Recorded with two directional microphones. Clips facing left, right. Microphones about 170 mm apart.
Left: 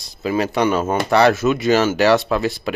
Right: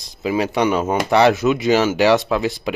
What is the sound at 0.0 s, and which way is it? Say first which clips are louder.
Speech: even; 15° right (ahead or behind).